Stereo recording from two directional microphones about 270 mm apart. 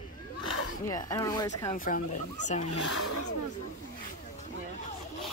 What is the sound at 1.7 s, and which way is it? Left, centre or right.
Speech, left.